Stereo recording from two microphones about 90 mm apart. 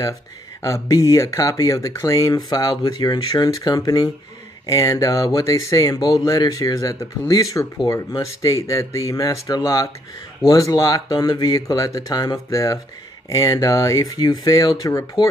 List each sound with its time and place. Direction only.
0.6 s speech: 35° left (ahead or behind)